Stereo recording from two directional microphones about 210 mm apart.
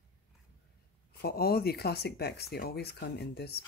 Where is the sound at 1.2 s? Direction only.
50° left (ahead or behind).